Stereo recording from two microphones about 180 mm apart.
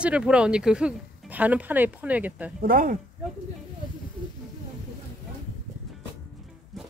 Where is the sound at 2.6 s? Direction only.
50° right (ahead or behind).